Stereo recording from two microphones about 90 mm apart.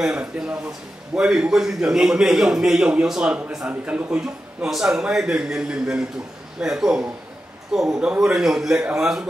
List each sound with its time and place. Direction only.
0.0 s a man's voice: 10° right (ahead or behind)